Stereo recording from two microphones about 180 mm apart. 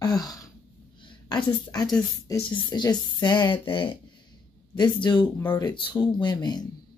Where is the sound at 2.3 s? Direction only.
25° left (ahead or behind).